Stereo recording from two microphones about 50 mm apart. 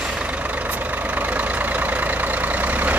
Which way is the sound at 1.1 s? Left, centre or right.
Right.